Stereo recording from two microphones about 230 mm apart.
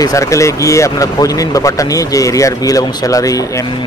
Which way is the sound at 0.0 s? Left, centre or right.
Centre.